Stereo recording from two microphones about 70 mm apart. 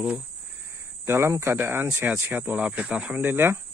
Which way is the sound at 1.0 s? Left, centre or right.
Right.